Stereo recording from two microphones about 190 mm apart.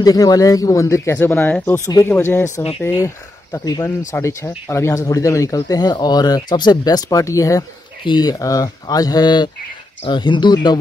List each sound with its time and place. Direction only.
0.0 s speech: 20° left (ahead or behind)